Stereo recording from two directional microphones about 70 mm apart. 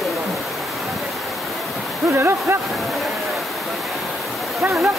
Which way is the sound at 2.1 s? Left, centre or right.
Right.